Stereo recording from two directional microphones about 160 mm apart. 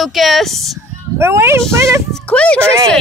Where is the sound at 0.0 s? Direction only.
Centre (ahead or behind).